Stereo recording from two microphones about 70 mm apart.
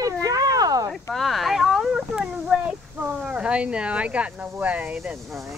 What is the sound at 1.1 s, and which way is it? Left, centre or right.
Speech, centre.